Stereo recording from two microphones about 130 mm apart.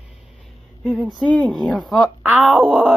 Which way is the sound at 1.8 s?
5° right (ahead or behind).